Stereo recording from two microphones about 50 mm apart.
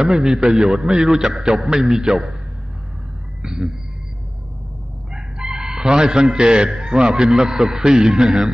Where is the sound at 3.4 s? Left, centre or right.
Centre.